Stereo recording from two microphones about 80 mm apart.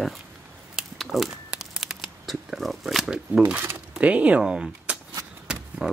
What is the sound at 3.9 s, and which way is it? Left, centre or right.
Speech, centre.